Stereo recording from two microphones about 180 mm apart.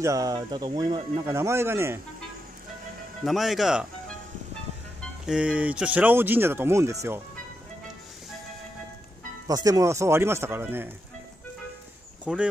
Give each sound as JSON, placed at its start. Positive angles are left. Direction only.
{"t": 0.0, "sound": "speech", "side_deg": -20}
{"t": 3.3, "sound": "speech", "side_deg": 0}
{"t": 5.2, "sound": "speech", "side_deg": -5}
{"t": 9.5, "sound": "speech", "side_deg": -20}
{"t": 12.3, "sound": "speech", "side_deg": -5}